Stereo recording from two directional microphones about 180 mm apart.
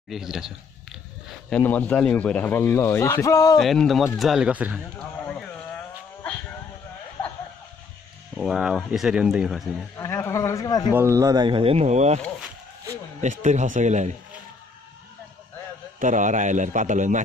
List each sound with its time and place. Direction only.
0.1 s speech: centre (ahead or behind)
1.5 s speech: 10° left (ahead or behind)
3.5 s speech: centre (ahead or behind)
5.2 s a sound: 5° left (ahead or behind)
8.4 s speech: 5° right (ahead or behind)
9.9 s speech: 15° left (ahead or behind)
10.9 s speech: 15° right (ahead or behind); by 12.2 s 40° right (ahead or behind)
12.2 s a sound: 5° right (ahead or behind)
13.2 s speech: 40° right (ahead or behind)
16.0 s a man's voice: 45° right (ahead or behind)